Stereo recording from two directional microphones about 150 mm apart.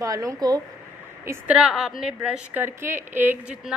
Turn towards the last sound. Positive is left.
turn(degrees=-10)  # may be behind; listen again after turning